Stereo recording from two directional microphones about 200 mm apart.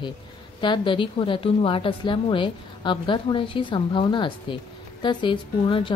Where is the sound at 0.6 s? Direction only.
25° left (ahead or behind).